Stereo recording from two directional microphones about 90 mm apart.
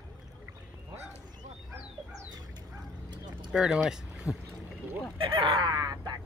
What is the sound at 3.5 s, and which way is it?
Speech, 10° right (ahead or behind).